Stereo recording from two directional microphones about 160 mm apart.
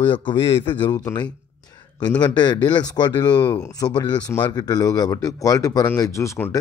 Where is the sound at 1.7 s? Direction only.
25° left (ahead or behind).